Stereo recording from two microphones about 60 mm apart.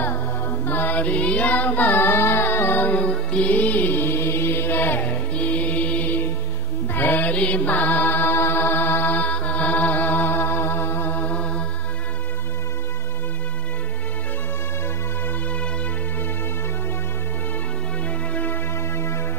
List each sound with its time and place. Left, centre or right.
0.0 s music: left
6.9 s mantra: left
18.3 s music: left